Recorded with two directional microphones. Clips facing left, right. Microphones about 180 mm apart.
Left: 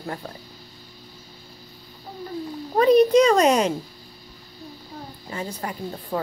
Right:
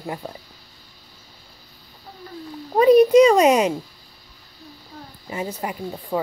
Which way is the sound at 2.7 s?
5° right (ahead or behind).